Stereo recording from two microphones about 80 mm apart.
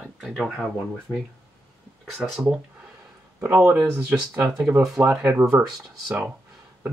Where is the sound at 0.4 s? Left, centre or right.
Centre.